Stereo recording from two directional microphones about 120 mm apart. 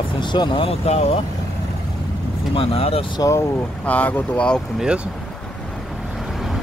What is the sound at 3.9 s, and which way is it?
Speech, 15° left (ahead or behind).